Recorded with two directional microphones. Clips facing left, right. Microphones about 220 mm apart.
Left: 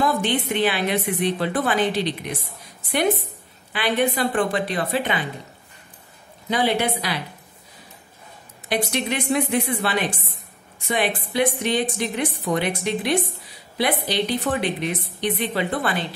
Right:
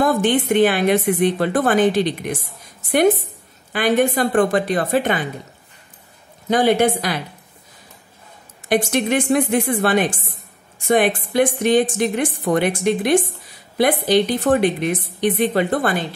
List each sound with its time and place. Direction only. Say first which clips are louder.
0.0 s a woman's voice: right 5 dB; 50° right (ahead or behind)
6.5 s a woman's voice: right 6 dB; 45° right (ahead or behind)
8.6 s a woman's voice: right 6 dB; 50° right (ahead or behind)